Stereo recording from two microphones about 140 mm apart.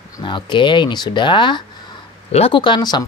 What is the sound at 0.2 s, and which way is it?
Speech, 35° left (ahead or behind).